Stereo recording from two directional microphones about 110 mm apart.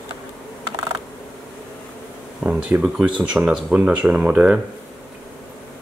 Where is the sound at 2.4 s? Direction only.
10° right (ahead or behind).